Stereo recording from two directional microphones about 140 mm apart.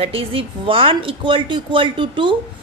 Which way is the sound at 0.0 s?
40° right (ahead or behind).